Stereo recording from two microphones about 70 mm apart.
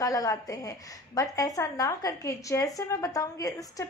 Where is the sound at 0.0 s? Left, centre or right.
Left.